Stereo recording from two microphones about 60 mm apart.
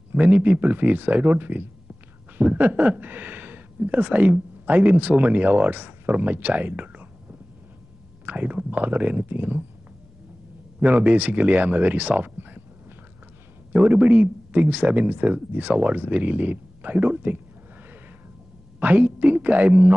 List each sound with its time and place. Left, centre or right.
0.1 s speech: right
10.8 s speech: right
12.4 s a sound: right
13.7 s speech: right
18.8 s speech: right